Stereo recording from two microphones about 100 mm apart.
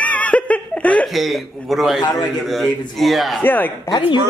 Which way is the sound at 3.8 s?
45° left (ahead or behind).